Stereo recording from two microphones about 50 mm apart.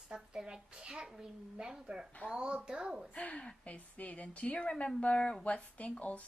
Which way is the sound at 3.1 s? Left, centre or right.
Left.